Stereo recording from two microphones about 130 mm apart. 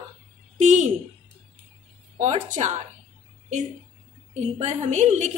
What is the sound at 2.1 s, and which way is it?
Speech, 65° right (ahead or behind).